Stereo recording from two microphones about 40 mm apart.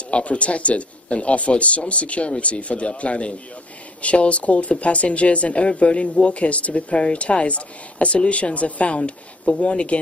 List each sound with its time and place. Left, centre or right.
0.1 s speech: left